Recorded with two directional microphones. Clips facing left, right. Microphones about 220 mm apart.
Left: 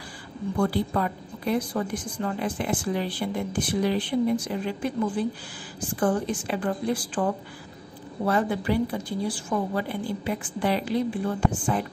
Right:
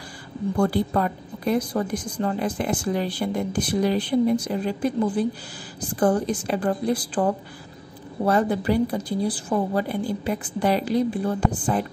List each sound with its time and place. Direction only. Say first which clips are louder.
0.6 s a woman's voice: right 3 dB; 45° right (ahead or behind)
8.3 s a woman's voice: right 3 dB; 40° right (ahead or behind)